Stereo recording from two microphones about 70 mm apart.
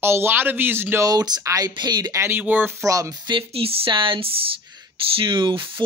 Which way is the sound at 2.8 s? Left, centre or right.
Right.